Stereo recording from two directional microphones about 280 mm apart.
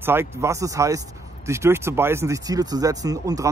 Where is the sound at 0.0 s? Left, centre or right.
Centre.